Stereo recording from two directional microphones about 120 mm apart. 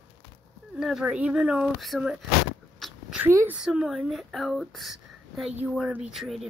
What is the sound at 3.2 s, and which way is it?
Speech, 25° right (ahead or behind).